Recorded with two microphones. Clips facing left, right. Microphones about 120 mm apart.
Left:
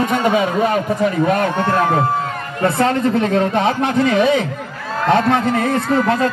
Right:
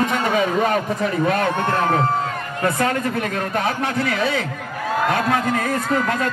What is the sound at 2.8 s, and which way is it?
Speech, 25° left (ahead or behind).